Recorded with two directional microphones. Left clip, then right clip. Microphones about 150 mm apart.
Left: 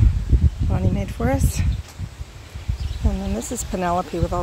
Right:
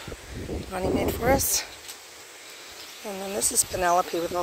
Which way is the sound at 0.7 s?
20° right (ahead or behind).